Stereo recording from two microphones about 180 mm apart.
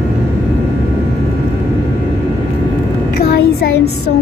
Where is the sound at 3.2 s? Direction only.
60° left (ahead or behind).